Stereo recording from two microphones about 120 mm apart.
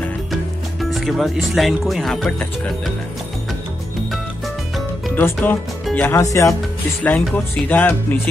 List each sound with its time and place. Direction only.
0.3 s speech: centre (ahead or behind)
5.1 s speech: 15° left (ahead or behind)
7.0 s speech: 15° left (ahead or behind)